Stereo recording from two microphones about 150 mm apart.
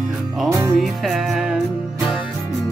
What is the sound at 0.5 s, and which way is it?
Music, 20° right (ahead or behind).